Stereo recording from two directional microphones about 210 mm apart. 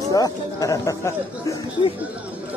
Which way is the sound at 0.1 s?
15° left (ahead or behind).